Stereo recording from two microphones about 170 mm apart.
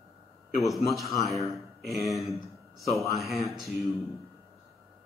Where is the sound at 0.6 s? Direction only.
Centre (ahead or behind).